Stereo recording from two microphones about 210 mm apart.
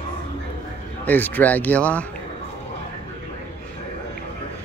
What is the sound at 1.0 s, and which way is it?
Speech, 10° left (ahead or behind).